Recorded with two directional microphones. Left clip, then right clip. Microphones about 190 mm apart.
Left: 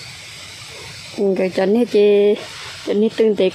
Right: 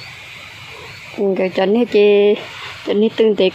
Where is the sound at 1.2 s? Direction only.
15° left (ahead or behind).